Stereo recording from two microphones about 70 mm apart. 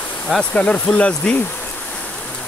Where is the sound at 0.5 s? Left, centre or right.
Centre.